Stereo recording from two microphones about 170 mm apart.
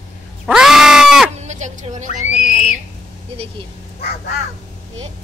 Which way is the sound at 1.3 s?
40° right (ahead or behind).